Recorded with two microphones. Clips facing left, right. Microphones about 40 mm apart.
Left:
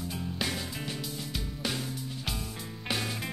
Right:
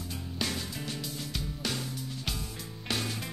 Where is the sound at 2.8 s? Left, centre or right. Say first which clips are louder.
Left 1 dB; centre.